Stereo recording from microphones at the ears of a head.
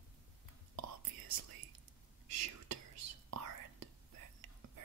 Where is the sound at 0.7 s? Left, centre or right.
Right.